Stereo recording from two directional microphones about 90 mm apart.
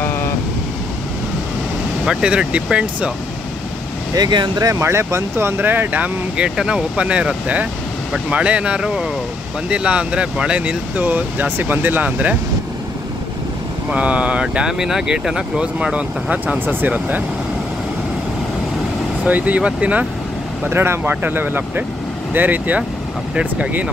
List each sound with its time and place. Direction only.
2.0 s speech: 10° right (ahead or behind)
4.1 s speech: 55° right (ahead or behind)
4.6 s speech: 30° right (ahead or behind)
13.8 s speech: 15° right (ahead or behind)
19.2 s speech: 15° right (ahead or behind)
20.7 s speech: 25° right (ahead or behind)